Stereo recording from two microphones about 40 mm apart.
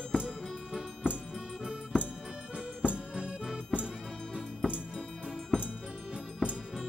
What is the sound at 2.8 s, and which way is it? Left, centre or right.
Accordion, right.